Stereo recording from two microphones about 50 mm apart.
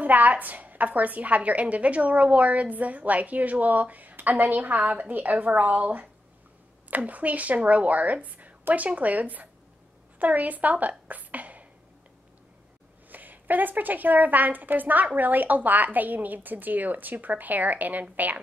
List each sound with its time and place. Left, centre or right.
0.0 s a woman's voice: right
13.1 s a woman's voice: right